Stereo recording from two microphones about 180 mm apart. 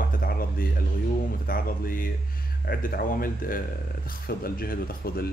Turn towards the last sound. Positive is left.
turn(degrees=55)  # may be behind; listen again after turning